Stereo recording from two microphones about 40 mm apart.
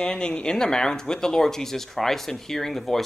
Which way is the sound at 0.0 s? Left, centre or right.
Left.